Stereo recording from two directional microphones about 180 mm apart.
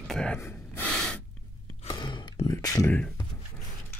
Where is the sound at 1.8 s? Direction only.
25° left (ahead or behind).